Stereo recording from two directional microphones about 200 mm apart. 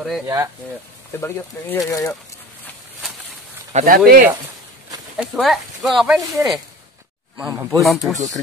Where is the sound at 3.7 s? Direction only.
40° right (ahead or behind).